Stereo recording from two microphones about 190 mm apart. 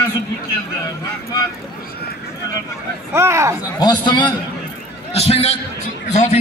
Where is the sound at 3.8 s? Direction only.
20° left (ahead or behind).